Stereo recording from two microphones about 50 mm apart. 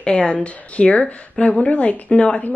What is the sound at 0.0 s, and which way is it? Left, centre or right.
Speech, left.